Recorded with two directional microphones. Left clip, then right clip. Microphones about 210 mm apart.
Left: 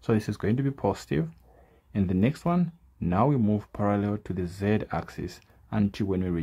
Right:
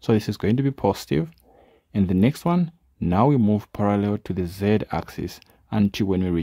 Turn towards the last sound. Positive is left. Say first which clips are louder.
# right 6 dB
turn(degrees=-30)  # may be behind; listen again after turning